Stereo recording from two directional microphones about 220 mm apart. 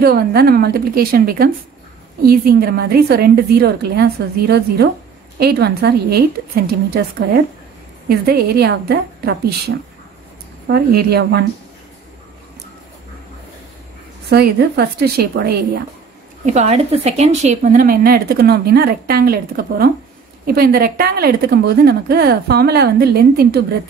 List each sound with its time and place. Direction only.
0.0 s speech: 45° right (ahead or behind)
14.3 s speech: 45° right (ahead or behind)
16.4 s speech: 30° right (ahead or behind)